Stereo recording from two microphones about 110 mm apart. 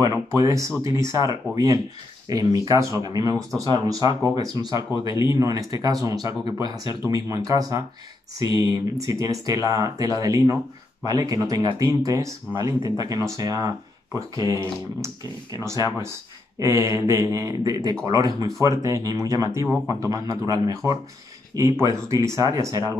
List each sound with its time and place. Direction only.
0.0 s speech: 30° right (ahead or behind)